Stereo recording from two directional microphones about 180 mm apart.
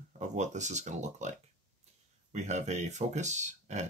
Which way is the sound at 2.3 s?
40° right (ahead or behind).